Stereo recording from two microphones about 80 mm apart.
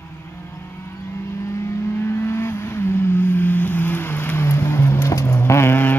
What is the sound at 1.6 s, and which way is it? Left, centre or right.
Vehicle, left.